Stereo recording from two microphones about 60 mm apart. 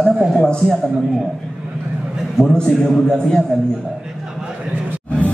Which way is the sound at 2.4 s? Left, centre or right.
Centre.